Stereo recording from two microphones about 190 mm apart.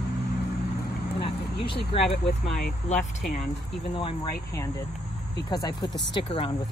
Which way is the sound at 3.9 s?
25° left (ahead or behind).